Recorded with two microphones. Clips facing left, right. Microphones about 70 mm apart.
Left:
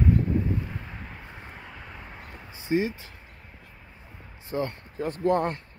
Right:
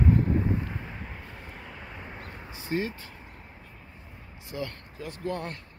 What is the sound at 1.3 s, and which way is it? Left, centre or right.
Vehicle, centre.